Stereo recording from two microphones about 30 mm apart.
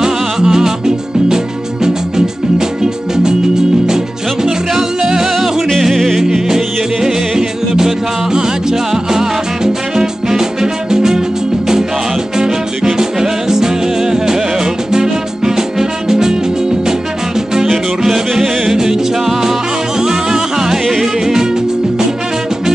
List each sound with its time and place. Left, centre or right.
0.0 s music: right
3.8 s music: centre
5.8 s music: centre
18.0 s music: centre
20.0 s music: right